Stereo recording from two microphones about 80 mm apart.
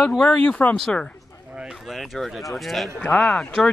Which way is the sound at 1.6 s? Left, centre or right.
Centre.